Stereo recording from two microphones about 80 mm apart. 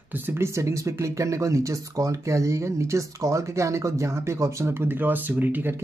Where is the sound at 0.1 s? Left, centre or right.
Right.